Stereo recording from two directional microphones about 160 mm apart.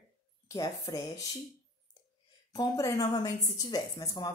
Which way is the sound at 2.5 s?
25° left (ahead or behind).